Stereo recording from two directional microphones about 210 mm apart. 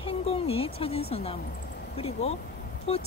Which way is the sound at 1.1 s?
30° left (ahead or behind).